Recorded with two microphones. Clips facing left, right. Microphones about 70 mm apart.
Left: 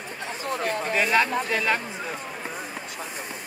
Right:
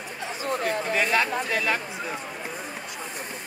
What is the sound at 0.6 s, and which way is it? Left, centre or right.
Speech, left.